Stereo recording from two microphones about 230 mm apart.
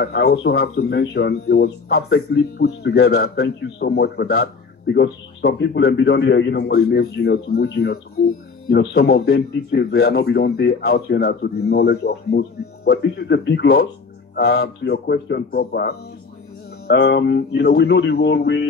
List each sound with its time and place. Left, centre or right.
0.0 s speech: left